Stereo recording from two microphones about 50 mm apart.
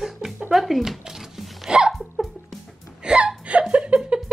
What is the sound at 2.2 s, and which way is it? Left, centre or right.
Music, centre.